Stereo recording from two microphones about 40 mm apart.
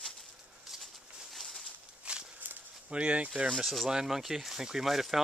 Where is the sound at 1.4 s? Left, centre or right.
Centre.